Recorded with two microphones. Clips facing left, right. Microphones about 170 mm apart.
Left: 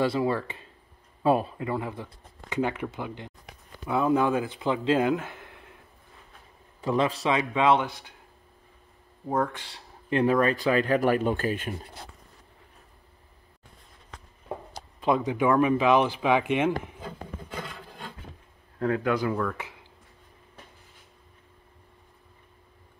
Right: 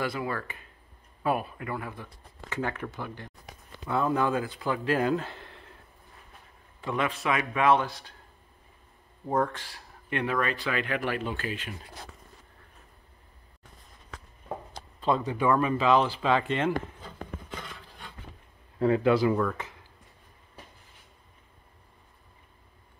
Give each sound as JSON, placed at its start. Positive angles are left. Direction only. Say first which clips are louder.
{"t": 0.0, "sound": "speech", "louder": "left 6 dB", "side_deg": 25}
{"t": 6.8, "sound": "speech", "louder": "left 5 dB", "side_deg": 30}
{"t": 7.3, "sound": "speech", "louder": "left 1 dB", "side_deg": 20}
{"t": 9.5, "sound": "speech", "louder": "even", "side_deg": 20}
{"t": 15.0, "sound": "speech", "louder": "left 2 dB", "side_deg": 15}
{"t": 18.8, "sound": "speech", "louder": "right 3 dB", "side_deg": -5}